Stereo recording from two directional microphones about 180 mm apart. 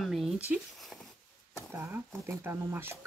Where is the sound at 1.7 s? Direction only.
10° right (ahead or behind).